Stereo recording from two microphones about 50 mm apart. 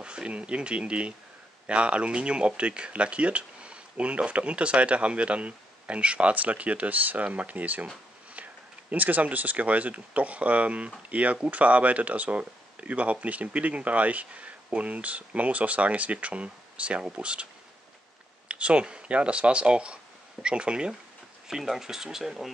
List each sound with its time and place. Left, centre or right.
0.0 s speech: right
8.9 s speech: right
18.5 s speech: right
21.5 s speech: centre